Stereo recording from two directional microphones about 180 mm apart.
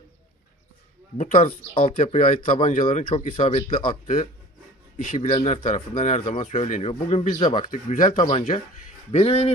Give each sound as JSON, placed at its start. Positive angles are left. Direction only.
{"t": 1.1, "sound": "speech", "side_deg": 40}
{"t": 4.9, "sound": "speech", "side_deg": 45}
{"t": 7.7, "sound": "speech", "side_deg": 45}
{"t": 8.2, "sound": "speech", "side_deg": 35}